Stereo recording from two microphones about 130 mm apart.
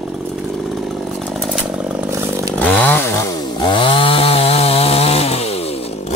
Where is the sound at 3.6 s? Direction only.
40° left (ahead or behind).